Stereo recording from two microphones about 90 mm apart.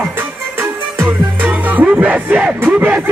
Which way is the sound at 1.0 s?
15° right (ahead or behind).